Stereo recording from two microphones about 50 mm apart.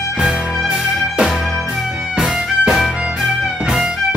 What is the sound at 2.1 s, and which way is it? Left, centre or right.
Music, centre.